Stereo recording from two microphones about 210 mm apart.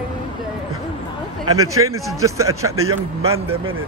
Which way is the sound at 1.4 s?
90° right.